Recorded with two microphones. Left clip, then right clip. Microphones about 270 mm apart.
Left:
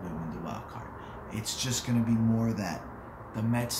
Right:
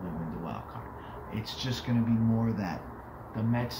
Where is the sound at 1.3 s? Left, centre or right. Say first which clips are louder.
Left 3 dB; centre.